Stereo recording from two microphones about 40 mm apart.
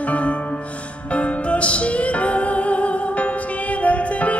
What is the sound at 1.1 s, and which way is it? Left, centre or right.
Music, left.